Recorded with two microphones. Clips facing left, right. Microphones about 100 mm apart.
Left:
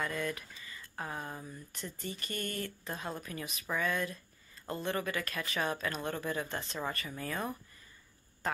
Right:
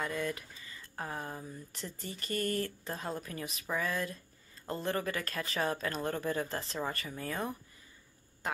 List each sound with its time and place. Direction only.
0.0 s speech: 25° right (ahead or behind)